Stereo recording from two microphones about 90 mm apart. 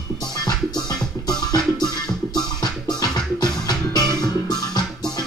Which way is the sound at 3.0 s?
50° left (ahead or behind).